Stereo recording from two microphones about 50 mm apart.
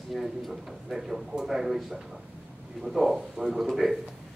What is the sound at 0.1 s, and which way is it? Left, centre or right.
Speech, centre.